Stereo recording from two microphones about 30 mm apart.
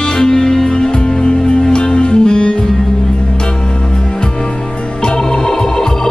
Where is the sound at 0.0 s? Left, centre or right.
Left.